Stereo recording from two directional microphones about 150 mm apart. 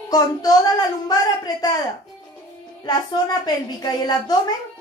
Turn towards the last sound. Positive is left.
turn(degrees=25)  # may be behind; listen again after turning